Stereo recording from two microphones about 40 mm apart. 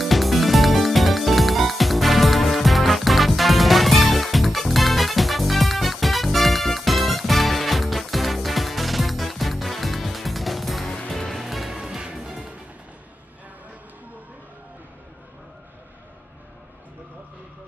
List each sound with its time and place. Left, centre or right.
0.0 s music: centre
11.4 s music: centre
11.7 s music: centre